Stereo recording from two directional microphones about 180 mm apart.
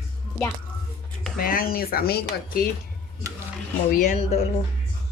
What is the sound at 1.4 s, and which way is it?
Speech, 55° left (ahead or behind).